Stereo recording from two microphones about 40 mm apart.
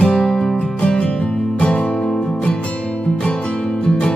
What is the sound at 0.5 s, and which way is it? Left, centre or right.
Music, left.